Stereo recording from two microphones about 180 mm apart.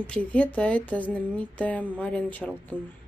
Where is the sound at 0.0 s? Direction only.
5° left (ahead or behind).